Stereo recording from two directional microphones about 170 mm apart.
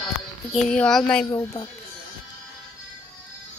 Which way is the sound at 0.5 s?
5° left (ahead or behind).